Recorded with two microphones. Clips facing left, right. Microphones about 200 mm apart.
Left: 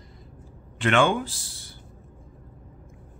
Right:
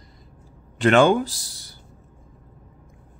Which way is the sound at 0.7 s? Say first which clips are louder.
Right 6 dB; 40° right (ahead or behind).